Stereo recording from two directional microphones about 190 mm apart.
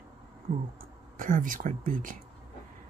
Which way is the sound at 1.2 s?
45° right (ahead or behind).